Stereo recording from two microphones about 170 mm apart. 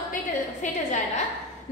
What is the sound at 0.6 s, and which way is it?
Speech, 45° left (ahead or behind).